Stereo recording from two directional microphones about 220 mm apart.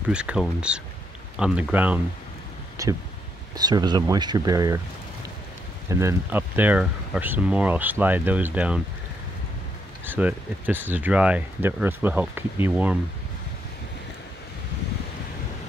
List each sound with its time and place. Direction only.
0.1 s speech: 5° right (ahead or behind)
5.9 s speech: 15° right (ahead or behind)
10.0 s speech: 10° right (ahead or behind)